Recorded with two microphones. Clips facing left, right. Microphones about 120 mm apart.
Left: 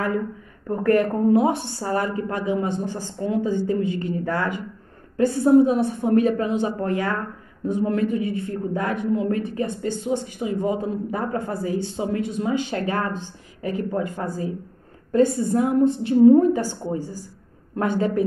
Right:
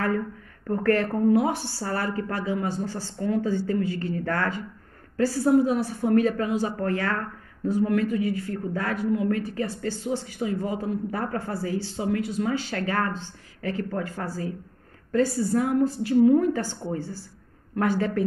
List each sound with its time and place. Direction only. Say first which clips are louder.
0.7 s a woman's voice: left 3 dB; 20° left (ahead or behind)